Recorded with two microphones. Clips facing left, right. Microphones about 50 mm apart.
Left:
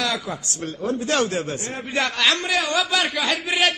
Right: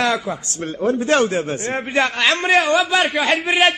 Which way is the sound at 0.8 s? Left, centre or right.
Right.